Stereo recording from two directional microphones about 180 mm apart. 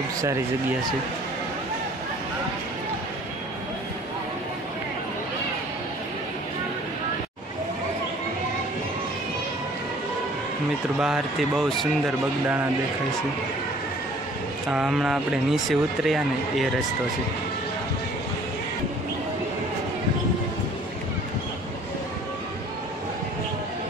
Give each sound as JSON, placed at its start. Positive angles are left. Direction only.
{"t": 11.0, "sound": "speech", "side_deg": 0}
{"t": 14.7, "sound": "speech", "side_deg": 0}